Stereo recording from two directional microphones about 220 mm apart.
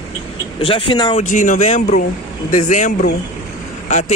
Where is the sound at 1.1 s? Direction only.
35° left (ahead or behind).